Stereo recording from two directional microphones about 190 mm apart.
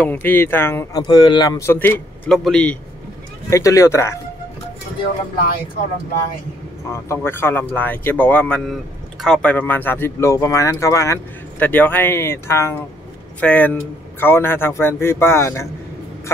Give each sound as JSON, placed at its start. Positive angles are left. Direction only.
{"t": 0.0, "sound": "speech", "side_deg": 10}
{"t": 3.4, "sound": "speech", "side_deg": 15}
{"t": 6.9, "sound": "speech", "side_deg": 15}